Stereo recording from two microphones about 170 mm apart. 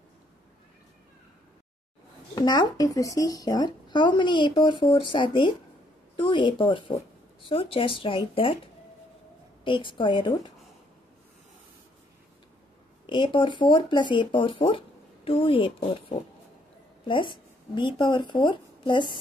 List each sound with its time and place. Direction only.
2.3 s speech: 25° left (ahead or behind)
9.7 s speech: 30° left (ahead or behind)
13.0 s speech: 30° left (ahead or behind)
17.7 s speech: 30° left (ahead or behind)